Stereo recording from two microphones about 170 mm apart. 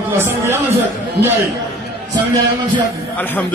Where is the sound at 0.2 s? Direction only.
15° right (ahead or behind).